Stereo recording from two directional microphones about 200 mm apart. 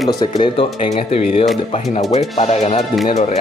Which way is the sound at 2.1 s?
35° left (ahead or behind).